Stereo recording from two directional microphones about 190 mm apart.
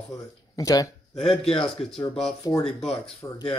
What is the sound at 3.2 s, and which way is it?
Speech, 20° left (ahead or behind).